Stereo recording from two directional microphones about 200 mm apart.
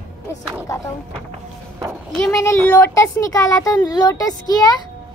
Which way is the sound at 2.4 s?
10° left (ahead or behind).